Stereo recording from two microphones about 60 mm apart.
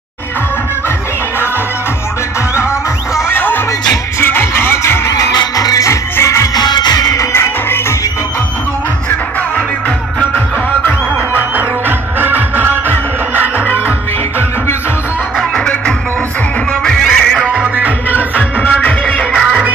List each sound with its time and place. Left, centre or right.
3.2 s music: left
5.1 s music: left
6.2 s music: left
7.3 s music: left
9.8 s music: left
12.2 s music: right
15.3 s music: left
16.8 s music: centre
17.5 s music: right
18.1 s music: left
19.3 s music: centre